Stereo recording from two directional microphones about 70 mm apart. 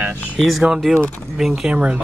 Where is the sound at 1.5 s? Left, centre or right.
Centre.